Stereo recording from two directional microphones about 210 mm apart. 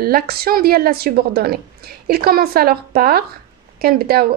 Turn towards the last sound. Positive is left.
turn(degrees=-45)  # may be behind; listen again after turning